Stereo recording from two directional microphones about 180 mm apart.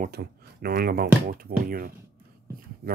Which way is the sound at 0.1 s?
60° right (ahead or behind).